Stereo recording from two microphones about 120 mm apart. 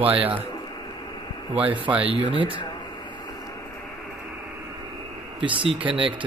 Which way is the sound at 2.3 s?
45° right (ahead or behind).